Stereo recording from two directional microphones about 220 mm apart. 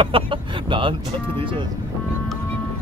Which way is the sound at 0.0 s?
25° right (ahead or behind).